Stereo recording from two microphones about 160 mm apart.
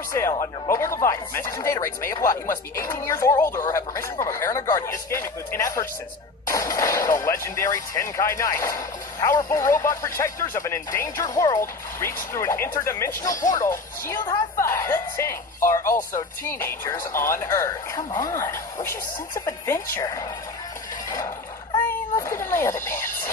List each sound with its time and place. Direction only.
0.3 s speech: 20° left (ahead or behind)
14.2 s a woman's voice: 25° left (ahead or behind)
14.7 s speech: 15° left (ahead or behind)
22.1 s music: 20° left (ahead or behind)